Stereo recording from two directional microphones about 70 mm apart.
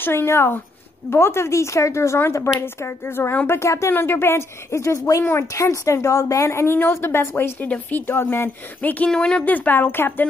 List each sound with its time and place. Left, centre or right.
0.0 s speech: left
3.9 s a woman's voice: left
7.6 s speech: left
8.8 s speech: left
9.1 s a woman's voice: centre
9.4 s speech: left